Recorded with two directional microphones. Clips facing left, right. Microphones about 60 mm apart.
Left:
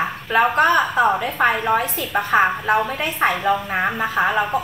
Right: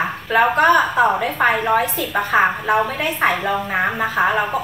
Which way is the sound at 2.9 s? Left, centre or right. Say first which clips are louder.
Right 1 dB; right.